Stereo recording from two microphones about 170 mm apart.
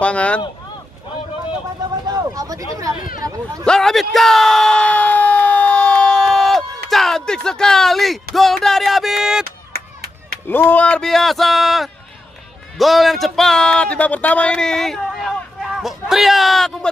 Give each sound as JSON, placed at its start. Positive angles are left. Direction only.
{"t": 0.0, "sound": "speech", "side_deg": 5}
{"t": 2.0, "sound": "speech", "side_deg": -20}
{"t": 3.6, "sound": "a sound", "side_deg": 5}
{"t": 6.9, "sound": "speech", "side_deg": 0}
{"t": 10.5, "sound": "speech", "side_deg": 10}